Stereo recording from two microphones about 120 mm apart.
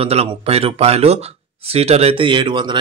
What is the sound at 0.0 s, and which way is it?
Speech, 60° right (ahead or behind).